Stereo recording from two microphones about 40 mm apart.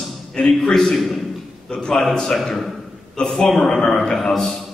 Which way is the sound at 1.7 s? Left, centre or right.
Centre.